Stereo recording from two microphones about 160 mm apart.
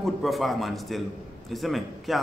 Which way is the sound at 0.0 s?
Centre (ahead or behind).